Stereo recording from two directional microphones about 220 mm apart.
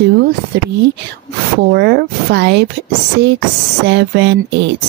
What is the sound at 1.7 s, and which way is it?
Speech, 50° right (ahead or behind).